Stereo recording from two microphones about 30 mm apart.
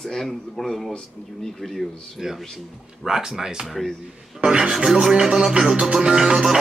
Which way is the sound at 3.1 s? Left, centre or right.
Centre.